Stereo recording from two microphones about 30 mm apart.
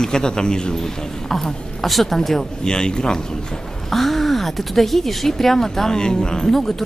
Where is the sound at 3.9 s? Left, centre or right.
Centre.